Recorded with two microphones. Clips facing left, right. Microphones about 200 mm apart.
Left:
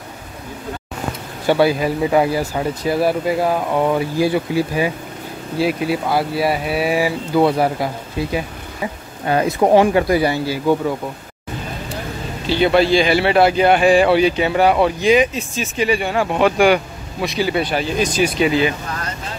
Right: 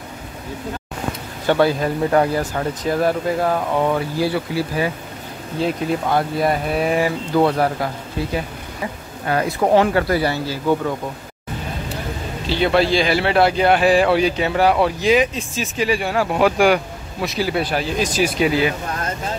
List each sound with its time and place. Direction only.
1.5 s speech: 10° left (ahead or behind)
9.3 s speech: 20° left (ahead or behind)
12.4 s a man's voice: centre (ahead or behind)